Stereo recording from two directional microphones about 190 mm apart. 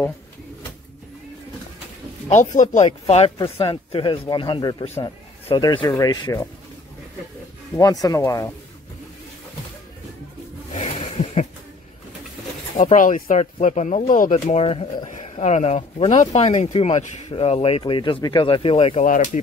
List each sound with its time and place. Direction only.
2.2 s speech: 40° left (ahead or behind); by 6.5 s 20° left (ahead or behind)
7.7 s speech: 20° left (ahead or behind)
10.7 s a sound: 35° left (ahead or behind)
12.7 s speech: 45° left (ahead or behind)